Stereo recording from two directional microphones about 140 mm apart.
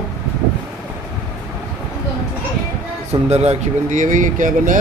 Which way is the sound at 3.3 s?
50° right (ahead or behind).